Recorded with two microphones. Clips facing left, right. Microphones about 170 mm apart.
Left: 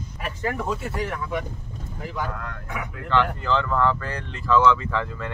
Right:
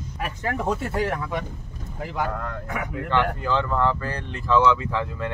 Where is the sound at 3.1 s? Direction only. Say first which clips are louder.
Left 1 dB; 15° right (ahead or behind).